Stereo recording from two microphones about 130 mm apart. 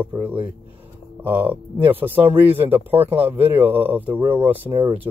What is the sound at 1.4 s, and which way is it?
Speech, 15° right (ahead or behind).